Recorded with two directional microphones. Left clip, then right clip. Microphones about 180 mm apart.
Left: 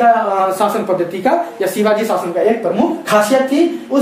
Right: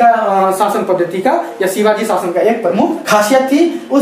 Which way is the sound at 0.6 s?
25° left (ahead or behind).